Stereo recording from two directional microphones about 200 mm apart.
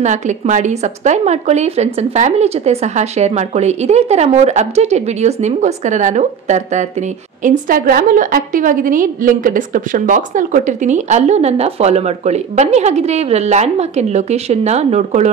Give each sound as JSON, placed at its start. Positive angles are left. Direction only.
{"t": 0.0, "sound": "a woman's voice", "side_deg": -35}